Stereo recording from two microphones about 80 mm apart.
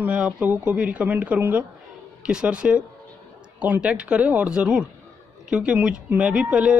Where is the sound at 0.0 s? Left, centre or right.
Centre.